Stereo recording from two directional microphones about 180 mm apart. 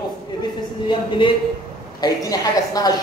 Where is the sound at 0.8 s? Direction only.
25° left (ahead or behind).